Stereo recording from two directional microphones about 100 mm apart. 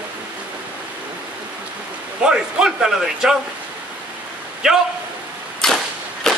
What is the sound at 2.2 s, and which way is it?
A man's voice, 5° right (ahead or behind).